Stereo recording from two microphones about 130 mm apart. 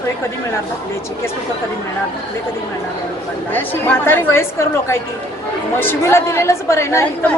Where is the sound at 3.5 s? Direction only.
15° left (ahead or behind).